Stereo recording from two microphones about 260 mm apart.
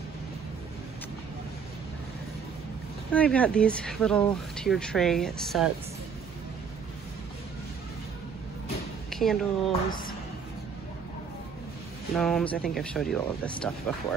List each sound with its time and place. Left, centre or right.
3.1 s speech: centre
9.1 s speech: centre
9.7 s speech: left
12.2 s speech: centre